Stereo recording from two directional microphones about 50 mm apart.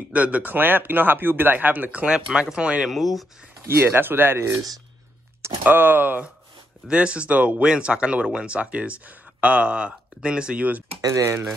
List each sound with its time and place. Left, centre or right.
0.1 s speech: right
2.0 s speech: centre
2.5 s speech: right
2.8 s speech: centre
3.6 s speech: right
5.6 s speech: right
6.9 s speech: right
11.1 s speech: right